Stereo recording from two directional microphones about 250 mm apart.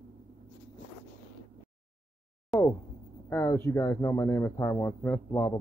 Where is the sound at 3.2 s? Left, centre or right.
Centre.